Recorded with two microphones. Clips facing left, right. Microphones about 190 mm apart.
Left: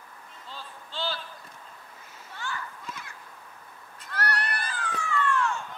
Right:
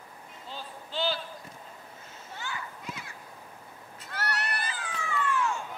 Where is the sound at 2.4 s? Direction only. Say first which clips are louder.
Left 2 dB; 15° right (ahead or behind).